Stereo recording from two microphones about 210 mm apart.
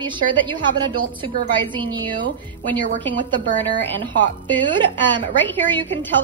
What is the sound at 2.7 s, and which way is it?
Speech, 10° left (ahead or behind).